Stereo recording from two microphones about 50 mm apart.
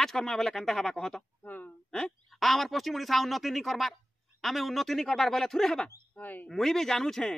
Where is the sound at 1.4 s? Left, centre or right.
Left.